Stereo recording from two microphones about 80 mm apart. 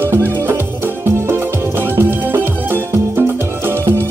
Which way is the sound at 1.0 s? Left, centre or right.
Right.